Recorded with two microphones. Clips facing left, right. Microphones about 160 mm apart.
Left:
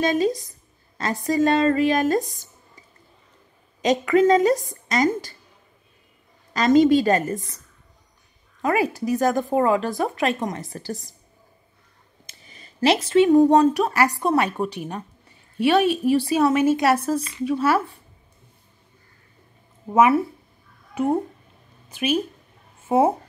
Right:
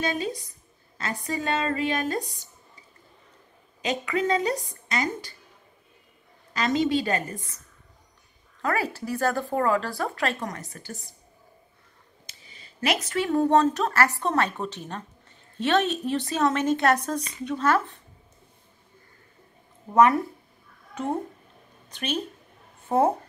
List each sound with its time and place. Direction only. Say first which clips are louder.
0.0 s a woman's voice: left 8 dB; 40° left (ahead or behind)
3.8 s a woman's voice: left 9 dB; 45° left (ahead or behind)
6.5 s a woman's voice: left 8 dB; 45° left (ahead or behind)
8.6 s speech: left 6 dB; 15° left (ahead or behind)
10.7 s a woman's voice: left 8 dB; 35° left (ahead or behind)
12.3 s a sound: left 4 dB; 45° left (ahead or behind)
12.8 s a woman's voice: left 9 dB; 30° left (ahead or behind); by 17.9 s 10° left (ahead or behind)
19.9 s a child's voice: left 2 dB; 5° left (ahead or behind)